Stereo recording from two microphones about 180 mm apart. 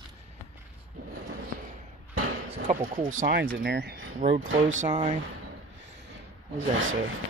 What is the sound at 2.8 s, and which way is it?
Speech, 50° right (ahead or behind).